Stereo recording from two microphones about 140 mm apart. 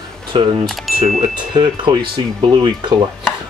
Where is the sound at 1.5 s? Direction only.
30° right (ahead or behind).